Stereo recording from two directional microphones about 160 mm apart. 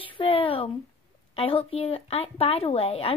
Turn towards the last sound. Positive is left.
turn(degrees=35)  # may be behind; listen again after turning